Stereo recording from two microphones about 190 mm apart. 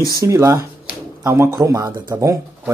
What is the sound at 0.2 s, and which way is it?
Speech, 15° right (ahead or behind).